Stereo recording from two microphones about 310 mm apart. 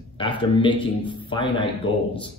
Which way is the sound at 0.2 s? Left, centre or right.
Centre.